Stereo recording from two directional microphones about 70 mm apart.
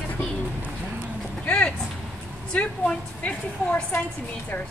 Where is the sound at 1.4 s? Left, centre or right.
Centre.